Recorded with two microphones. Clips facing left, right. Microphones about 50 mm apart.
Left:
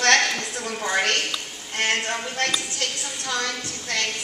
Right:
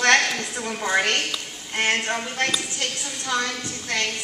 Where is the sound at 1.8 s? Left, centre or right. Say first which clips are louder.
Right 1 dB; right.